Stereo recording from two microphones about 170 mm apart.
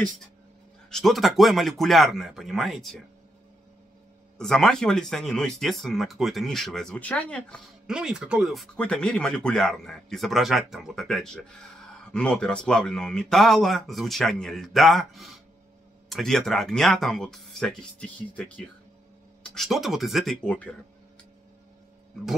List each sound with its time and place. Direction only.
0.8 s speech: centre (ahead or behind)
4.4 s speech: 5° left (ahead or behind)